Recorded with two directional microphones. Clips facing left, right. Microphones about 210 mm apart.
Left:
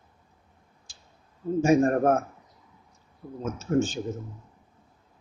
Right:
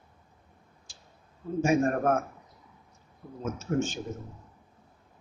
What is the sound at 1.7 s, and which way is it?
Speech, 35° left (ahead or behind).